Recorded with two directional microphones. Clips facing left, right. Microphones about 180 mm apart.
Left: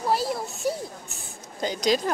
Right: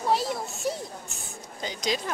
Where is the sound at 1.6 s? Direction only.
45° left (ahead or behind).